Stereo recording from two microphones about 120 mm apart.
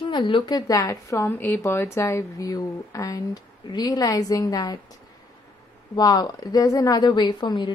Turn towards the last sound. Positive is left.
turn(degrees=40)  # may be behind; listen again after turning